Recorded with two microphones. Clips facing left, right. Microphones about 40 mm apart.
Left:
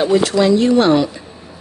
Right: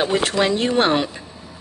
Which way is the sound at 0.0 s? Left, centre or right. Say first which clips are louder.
Left 5 dB; right.